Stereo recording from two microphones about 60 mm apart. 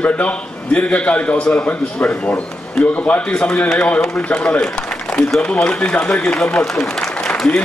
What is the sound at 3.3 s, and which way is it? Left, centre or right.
Speech, centre.